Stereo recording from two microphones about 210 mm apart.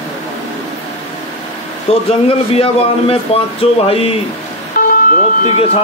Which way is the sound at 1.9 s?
30° left (ahead or behind).